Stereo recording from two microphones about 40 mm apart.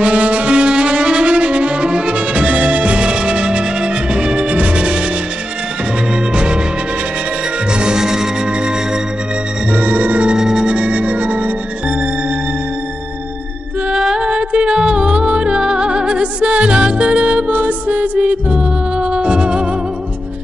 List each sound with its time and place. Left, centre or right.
0.0 s music: right
6.3 s music: right
7.7 s music: centre
9.7 s music: right
10.2 s music: centre
10.7 s music: right
13.8 s music: centre
14.3 s music: right
17.5 s music: right